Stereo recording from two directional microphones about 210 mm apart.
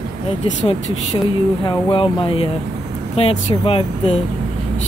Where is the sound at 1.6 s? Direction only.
25° left (ahead or behind).